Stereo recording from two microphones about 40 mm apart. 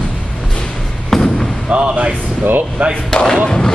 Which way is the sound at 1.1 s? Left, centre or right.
Centre.